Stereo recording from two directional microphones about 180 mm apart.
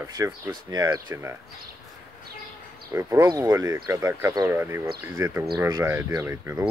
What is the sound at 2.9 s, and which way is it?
Speech, 15° right (ahead or behind).